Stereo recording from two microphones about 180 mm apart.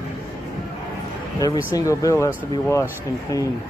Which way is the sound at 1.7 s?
15° left (ahead or behind).